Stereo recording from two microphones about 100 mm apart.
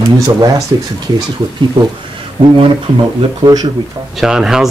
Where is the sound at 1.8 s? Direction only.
75° right (ahead or behind).